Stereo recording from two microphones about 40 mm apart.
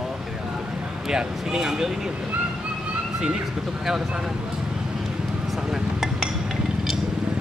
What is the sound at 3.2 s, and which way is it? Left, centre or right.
Speech, right.